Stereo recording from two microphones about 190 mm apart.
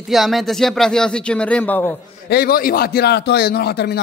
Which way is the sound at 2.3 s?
55° left (ahead or behind).